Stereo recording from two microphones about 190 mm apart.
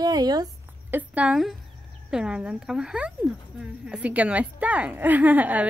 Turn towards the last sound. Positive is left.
turn(degrees=-10)  # may be behind; listen again after turning